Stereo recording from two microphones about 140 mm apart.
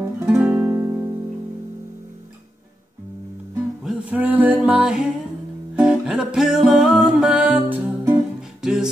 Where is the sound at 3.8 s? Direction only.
10° right (ahead or behind).